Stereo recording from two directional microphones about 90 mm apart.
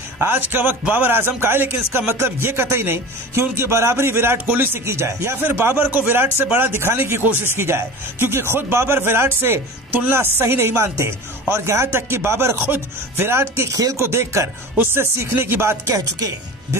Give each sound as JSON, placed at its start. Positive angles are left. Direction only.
{"t": 0.2, "sound": "a man's voice", "side_deg": -25}